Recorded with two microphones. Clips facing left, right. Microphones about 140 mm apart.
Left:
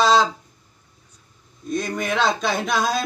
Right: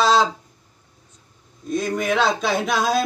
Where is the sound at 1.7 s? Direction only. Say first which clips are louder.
Right 3 dB; 5° right (ahead or behind).